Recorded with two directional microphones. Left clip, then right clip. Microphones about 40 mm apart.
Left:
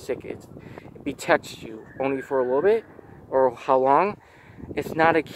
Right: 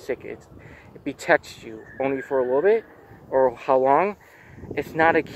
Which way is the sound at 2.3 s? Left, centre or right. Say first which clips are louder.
Right 1 dB; left.